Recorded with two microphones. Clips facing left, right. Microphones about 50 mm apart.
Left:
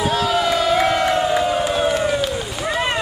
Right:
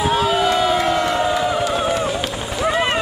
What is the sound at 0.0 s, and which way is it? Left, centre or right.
Crowd, right.